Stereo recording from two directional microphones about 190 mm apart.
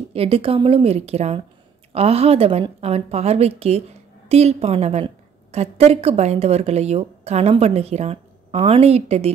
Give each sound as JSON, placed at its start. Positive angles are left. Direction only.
{"t": 0.1, "sound": "a woman's voice", "side_deg": -30}